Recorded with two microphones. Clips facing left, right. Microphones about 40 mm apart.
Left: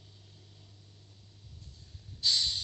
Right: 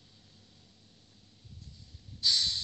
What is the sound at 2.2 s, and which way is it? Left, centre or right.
Snort, centre.